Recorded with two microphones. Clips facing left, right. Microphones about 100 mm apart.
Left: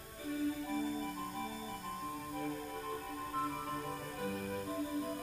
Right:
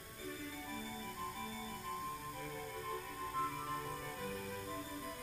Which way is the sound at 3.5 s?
45° left (ahead or behind).